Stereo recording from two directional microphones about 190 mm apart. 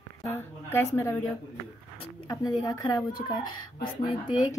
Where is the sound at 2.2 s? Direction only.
20° left (ahead or behind).